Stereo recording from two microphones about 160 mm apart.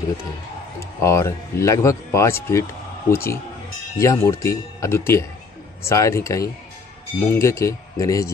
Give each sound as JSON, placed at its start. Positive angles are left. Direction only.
{"t": 0.7, "sound": "speech", "side_deg": 15}